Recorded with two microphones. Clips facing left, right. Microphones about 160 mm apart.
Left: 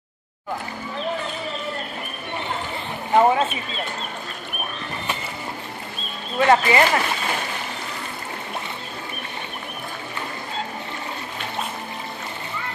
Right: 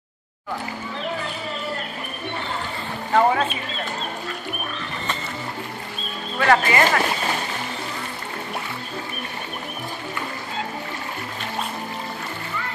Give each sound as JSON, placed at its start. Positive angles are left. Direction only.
{"t": 3.1, "sound": "speech", "side_deg": 20}
{"t": 6.4, "sound": "speech", "side_deg": 25}